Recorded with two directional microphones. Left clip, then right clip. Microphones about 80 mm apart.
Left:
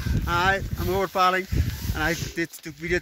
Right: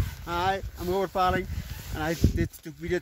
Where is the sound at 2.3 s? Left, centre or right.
Right.